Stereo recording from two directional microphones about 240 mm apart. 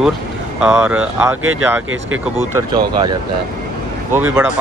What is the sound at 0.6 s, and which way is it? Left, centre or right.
Speech, centre.